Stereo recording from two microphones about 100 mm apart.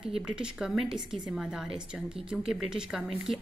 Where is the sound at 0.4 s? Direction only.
5° right (ahead or behind).